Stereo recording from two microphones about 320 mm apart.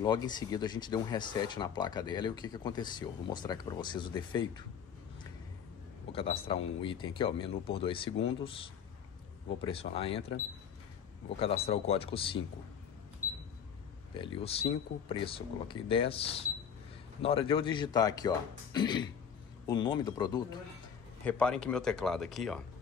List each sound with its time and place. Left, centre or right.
0.0 s speech: centre
6.1 s speech: centre
14.1 s speech: centre